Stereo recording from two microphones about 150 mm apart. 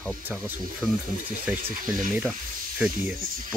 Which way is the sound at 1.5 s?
10° right (ahead or behind).